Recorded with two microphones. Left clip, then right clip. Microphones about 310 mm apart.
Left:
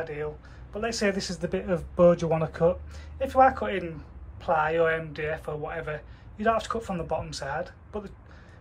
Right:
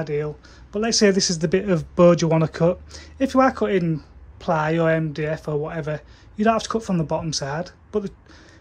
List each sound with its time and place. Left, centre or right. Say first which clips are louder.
0.0 s speech: right 7 dB; right